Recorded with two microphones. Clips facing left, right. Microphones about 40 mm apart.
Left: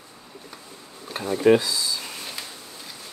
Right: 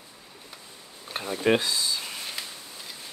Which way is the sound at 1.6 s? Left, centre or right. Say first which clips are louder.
Left 1 dB; right.